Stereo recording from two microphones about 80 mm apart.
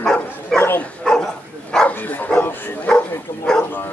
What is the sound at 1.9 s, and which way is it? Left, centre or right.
Speech, left.